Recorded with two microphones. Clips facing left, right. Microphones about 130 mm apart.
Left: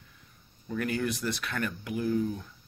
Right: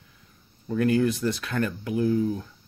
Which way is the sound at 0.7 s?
35° right (ahead or behind).